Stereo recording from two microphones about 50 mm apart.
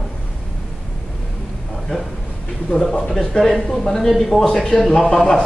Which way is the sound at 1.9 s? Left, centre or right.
Centre.